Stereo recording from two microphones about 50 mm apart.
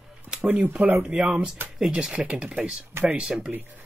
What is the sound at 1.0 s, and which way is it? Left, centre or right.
Speech, centre.